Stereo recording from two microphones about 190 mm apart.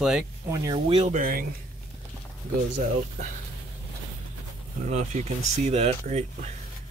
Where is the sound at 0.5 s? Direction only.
20° right (ahead or behind).